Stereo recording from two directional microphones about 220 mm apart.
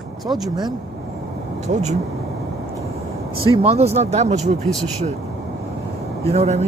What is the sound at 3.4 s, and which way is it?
Speech, 25° right (ahead or behind).